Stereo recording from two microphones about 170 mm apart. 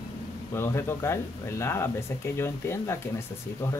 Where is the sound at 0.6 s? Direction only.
15° left (ahead or behind).